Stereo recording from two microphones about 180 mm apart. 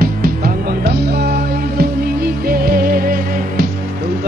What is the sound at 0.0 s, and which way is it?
Music, 55° right (ahead or behind).